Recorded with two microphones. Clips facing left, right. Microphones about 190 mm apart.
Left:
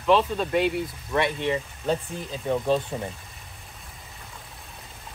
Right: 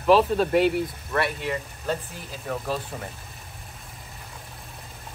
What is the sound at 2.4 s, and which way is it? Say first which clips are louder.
Speech: left 6 dB; 20° left (ahead or behind).